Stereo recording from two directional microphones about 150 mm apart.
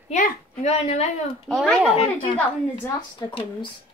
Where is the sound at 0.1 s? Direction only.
50° left (ahead or behind).